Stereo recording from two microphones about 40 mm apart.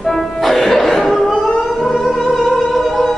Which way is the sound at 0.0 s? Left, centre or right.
Centre.